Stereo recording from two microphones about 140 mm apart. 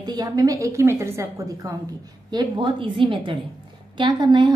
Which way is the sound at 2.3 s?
35° right (ahead or behind).